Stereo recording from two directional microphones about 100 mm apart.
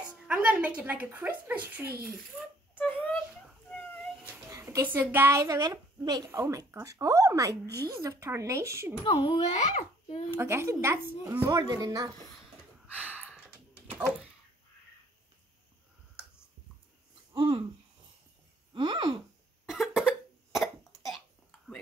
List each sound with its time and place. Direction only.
0.3 s a child's voice: 10° right (ahead or behind)
4.5 s a woman's voice: 30° right (ahead or behind)
5.4 s speech: 40° right (ahead or behind)
6.3 s speech: 30° right (ahead or behind)
9.0 s a child's voice: 55° left (ahead or behind); by 10.2 s 90° left
10.3 s speech: 25° right (ahead or behind)
11.5 s speech: 40° right (ahead or behind)
12.8 s a sound: 15° right (ahead or behind)
17.3 s a sound: 55° right (ahead or behind)
18.7 s a sound: 50° right (ahead or behind)
19.6 s cough: 5° right (ahead or behind)